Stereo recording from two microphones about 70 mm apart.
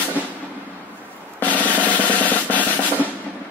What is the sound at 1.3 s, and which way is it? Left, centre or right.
Drum roll, left.